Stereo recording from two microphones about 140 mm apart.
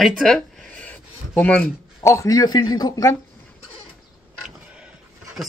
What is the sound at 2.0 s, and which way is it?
A man's voice, 20° left (ahead or behind).